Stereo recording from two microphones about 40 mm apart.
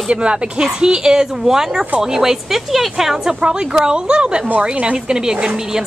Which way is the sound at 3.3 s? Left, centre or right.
Right.